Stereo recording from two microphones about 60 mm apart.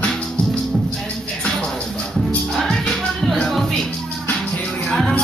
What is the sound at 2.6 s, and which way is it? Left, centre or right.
Music, centre.